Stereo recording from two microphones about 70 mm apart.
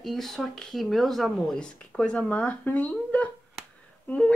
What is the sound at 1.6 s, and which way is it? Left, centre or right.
A woman's voice, centre.